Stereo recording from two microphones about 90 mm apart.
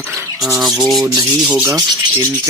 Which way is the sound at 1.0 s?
40° right (ahead or behind).